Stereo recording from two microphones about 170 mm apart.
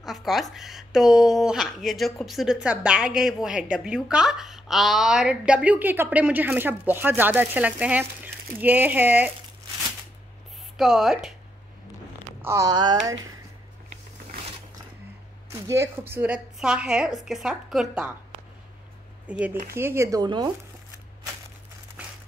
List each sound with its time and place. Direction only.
0.0 s a woman's voice: centre (ahead or behind)
10.8 s a woman's voice: centre (ahead or behind)
12.4 s speech: 15° right (ahead or behind)
15.6 s a woman's voice: 15° right (ahead or behind)
19.2 s a woman's voice: 10° right (ahead or behind); by 20.5 s 25° right (ahead or behind)
22.0 s crumpling: 10° right (ahead or behind)